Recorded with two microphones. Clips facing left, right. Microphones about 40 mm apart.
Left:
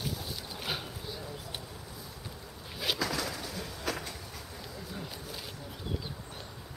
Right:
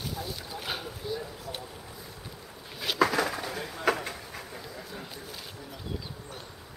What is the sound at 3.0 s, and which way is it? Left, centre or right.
Bird, right.